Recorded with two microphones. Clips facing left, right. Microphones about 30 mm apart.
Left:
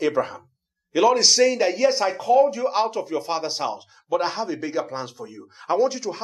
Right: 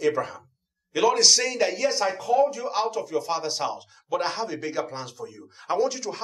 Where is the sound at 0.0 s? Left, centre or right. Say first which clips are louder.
Left 2 dB; centre.